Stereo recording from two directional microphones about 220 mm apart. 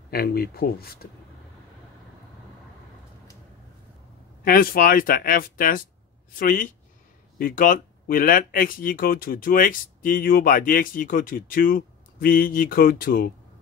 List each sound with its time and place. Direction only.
0.1 s speech: 45° left (ahead or behind)
4.5 s speech: 40° left (ahead or behind)